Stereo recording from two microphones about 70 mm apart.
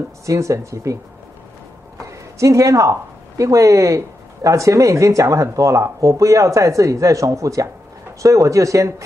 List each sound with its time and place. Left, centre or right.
0.3 s speech: right
2.0 s speech: right